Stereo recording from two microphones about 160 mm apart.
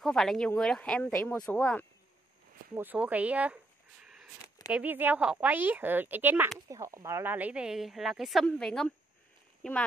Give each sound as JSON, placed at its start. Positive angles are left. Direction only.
{"t": 0.0, "sound": "speech", "side_deg": 0}
{"t": 2.7, "sound": "a woman's voice", "side_deg": -10}
{"t": 4.0, "sound": "a sound", "side_deg": -5}
{"t": 4.6, "sound": "a woman's voice", "side_deg": -10}